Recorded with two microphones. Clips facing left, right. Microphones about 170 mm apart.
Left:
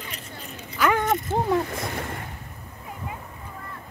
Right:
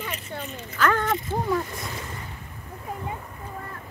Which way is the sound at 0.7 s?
15° left (ahead or behind).